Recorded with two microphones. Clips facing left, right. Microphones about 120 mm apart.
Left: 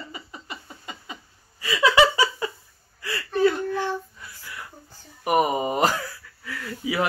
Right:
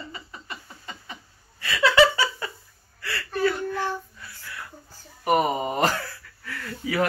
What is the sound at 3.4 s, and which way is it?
Child singing, 20° left (ahead or behind).